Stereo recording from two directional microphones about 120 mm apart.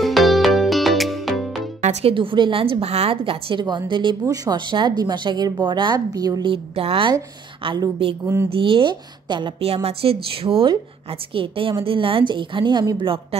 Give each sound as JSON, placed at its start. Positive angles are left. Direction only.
{"t": 0.0, "sound": "music", "side_deg": 0}
{"t": 1.8, "sound": "speech", "side_deg": -70}
{"t": 2.1, "sound": "a woman's voice", "side_deg": -45}
{"t": 6.5, "sound": "a woman's voice", "side_deg": -50}
{"t": 8.5, "sound": "a woman's voice", "side_deg": -45}
{"t": 9.8, "sound": "a woman's voice", "side_deg": -50}